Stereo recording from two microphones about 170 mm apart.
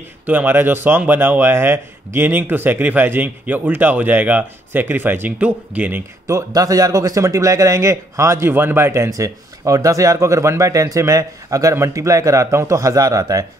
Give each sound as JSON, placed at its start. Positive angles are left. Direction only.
{"t": 0.3, "sound": "a man's voice", "side_deg": -10}